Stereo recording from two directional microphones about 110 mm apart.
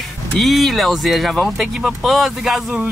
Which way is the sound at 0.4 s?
Centre (ahead or behind).